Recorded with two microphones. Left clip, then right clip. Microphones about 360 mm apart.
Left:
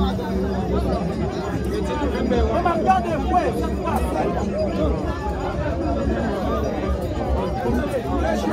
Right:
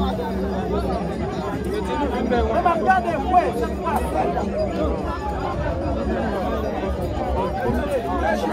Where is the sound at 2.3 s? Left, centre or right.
Right.